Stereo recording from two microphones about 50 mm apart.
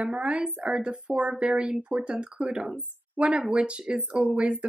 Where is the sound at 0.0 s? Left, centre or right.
Right.